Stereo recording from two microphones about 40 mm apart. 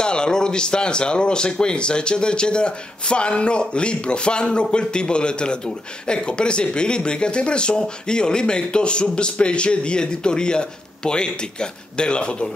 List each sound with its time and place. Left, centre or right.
0.0 s speech: left